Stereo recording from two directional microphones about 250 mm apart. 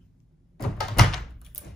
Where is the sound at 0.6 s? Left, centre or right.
Centre.